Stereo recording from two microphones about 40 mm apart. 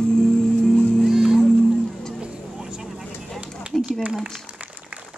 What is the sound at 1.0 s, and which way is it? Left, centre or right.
Music, centre.